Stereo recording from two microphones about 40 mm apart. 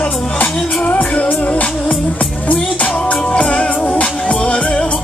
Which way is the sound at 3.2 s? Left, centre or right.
Left.